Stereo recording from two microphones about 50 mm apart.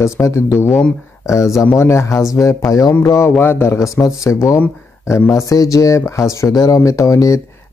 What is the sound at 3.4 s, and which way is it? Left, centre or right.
Speech, left.